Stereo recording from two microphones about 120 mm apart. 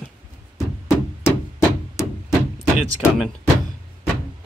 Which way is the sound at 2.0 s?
25° left (ahead or behind).